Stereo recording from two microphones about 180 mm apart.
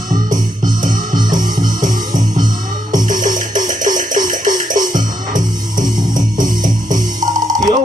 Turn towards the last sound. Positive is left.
turn(degrees=-20)  # may be behind; listen again after turning